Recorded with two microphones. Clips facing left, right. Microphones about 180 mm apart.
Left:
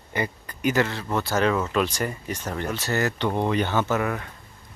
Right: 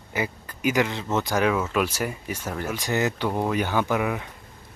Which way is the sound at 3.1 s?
5° right (ahead or behind).